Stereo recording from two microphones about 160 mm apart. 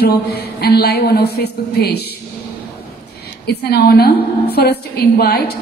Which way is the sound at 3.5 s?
85° left.